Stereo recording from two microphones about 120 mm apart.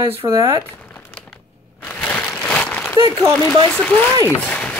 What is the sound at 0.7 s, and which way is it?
Crumpling, 15° left (ahead or behind).